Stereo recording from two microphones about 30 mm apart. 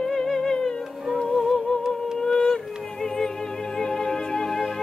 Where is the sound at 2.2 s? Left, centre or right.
Left.